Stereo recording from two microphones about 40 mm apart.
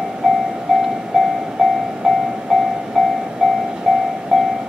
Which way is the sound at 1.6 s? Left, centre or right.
Centre.